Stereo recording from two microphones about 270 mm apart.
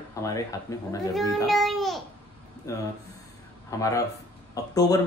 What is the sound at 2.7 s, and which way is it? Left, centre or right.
A man's voice, centre.